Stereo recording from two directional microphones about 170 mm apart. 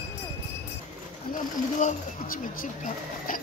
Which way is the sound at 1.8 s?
55° left (ahead or behind).